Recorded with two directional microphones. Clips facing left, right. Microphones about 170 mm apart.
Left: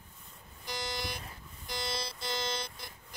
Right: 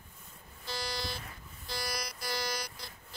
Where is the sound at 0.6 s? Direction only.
20° left (ahead or behind).